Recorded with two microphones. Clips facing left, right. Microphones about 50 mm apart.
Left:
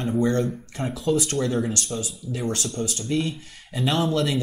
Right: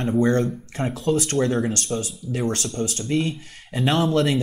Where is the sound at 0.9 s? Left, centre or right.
Right.